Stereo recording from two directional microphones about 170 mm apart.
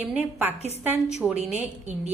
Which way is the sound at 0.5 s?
40° left (ahead or behind).